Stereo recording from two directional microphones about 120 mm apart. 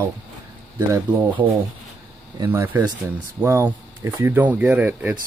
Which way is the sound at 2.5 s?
15° right (ahead or behind).